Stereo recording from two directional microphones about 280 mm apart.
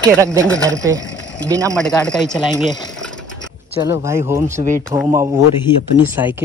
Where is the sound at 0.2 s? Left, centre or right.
Centre.